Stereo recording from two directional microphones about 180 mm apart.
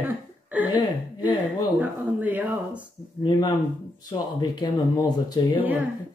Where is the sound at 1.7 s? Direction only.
10° right (ahead or behind).